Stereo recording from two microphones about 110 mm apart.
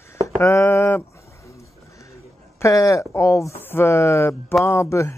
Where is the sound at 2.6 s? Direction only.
30° left (ahead or behind).